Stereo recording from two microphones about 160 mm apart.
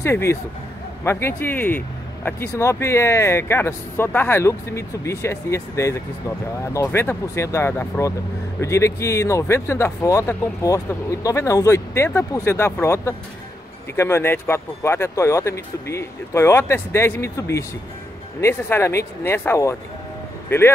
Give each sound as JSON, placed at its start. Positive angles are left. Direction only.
{"t": 0.0, "sound": "speech", "side_deg": 15}